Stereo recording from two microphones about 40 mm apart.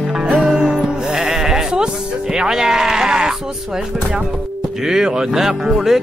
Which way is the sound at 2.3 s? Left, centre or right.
Centre.